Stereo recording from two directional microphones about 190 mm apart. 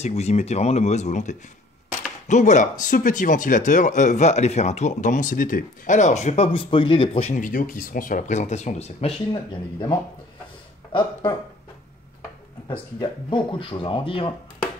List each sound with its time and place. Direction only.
0.0 s speech: 35° left (ahead or behind)
9.3 s speech: 25° left (ahead or behind)
13.3 s speech: 25° left (ahead or behind)